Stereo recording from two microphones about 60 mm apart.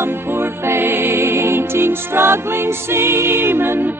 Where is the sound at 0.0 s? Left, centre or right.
Right.